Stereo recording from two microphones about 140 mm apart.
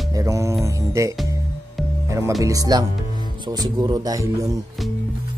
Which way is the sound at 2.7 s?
30° right (ahead or behind).